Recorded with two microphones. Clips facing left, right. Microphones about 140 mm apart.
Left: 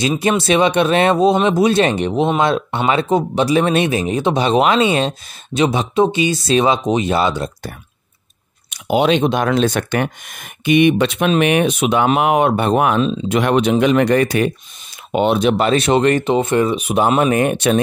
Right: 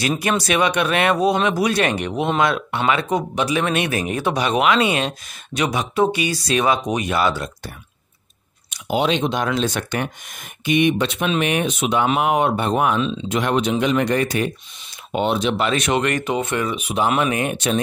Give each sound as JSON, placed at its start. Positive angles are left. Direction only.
{"t": 0.2, "sound": "speech", "side_deg": 25}
{"t": 8.6, "sound": "speech", "side_deg": 60}
{"t": 15.6, "sound": "speech", "side_deg": 30}